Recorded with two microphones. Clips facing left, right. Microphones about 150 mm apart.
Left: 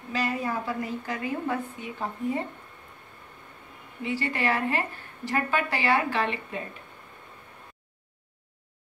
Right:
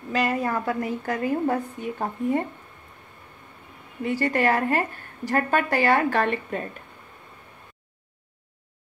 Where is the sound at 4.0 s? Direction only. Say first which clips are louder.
Right 6 dB; 45° right (ahead or behind).